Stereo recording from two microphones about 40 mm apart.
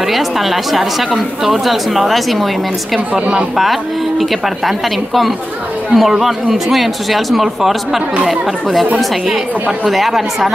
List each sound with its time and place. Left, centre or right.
0.0 s speech: centre
4.2 s speech: centre
8.9 s a woman's voice: centre
9.8 s speech: centre